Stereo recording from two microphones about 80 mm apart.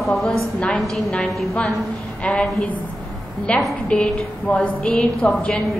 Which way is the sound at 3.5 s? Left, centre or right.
Centre.